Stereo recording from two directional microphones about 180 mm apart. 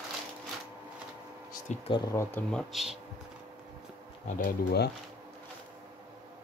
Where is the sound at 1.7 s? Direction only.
40° left (ahead or behind).